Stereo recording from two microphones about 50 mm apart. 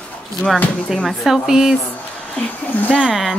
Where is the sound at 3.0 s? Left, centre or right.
Centre.